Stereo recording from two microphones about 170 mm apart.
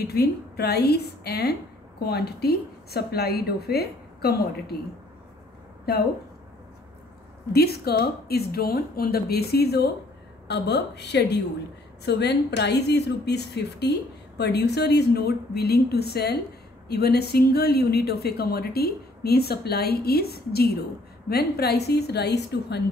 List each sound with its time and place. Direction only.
0.0 s a woman's voice: 70° left (ahead or behind)
7.5 s a woman's voice: 65° left (ahead or behind)